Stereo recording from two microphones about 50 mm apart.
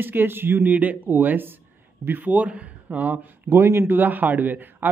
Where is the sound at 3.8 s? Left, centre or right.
Right.